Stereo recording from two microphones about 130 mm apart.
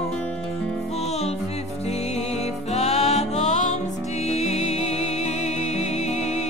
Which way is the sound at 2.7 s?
55° left (ahead or behind).